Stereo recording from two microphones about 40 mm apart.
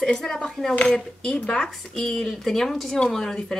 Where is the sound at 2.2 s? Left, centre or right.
Centre.